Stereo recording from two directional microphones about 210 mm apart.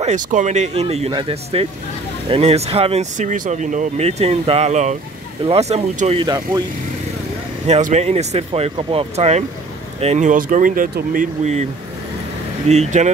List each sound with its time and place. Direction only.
0.0 s speech: 35° right (ahead or behind)
6.2 s speech: 20° right (ahead or behind)
7.6 s speech: 30° right (ahead or behind)
12.6 s speech: 30° right (ahead or behind)